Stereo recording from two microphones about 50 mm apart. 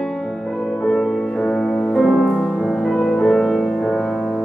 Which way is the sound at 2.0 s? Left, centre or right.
Centre.